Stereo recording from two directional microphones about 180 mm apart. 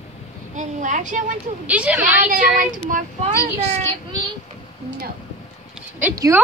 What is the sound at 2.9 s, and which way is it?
Speech, 45° right (ahead or behind).